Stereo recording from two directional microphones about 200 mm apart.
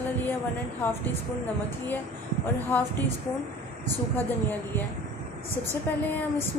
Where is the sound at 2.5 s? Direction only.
10° left (ahead or behind).